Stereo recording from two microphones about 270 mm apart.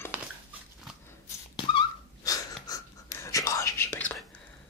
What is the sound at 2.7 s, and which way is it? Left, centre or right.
Whispering, centre.